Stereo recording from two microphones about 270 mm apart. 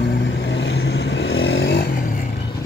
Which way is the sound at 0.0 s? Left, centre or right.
Left.